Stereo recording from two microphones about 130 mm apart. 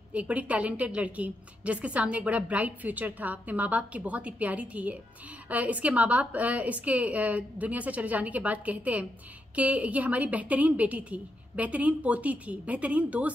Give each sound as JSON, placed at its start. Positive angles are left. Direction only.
{"t": 0.1, "sound": "a woman's voice", "side_deg": -10}